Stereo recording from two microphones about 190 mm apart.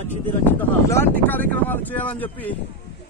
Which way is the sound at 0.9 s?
10° left (ahead or behind).